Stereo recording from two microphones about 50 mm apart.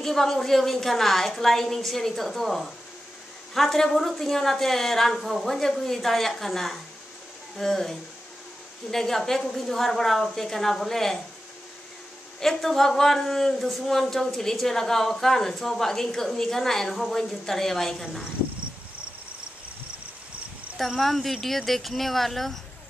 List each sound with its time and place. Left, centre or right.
0.0 s a woman's voice: centre
12.4 s speech: centre
20.7 s a woman's voice: centre